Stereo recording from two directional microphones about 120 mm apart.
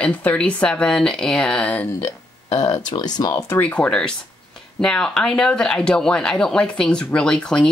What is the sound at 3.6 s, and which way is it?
Speech, 10° left (ahead or behind).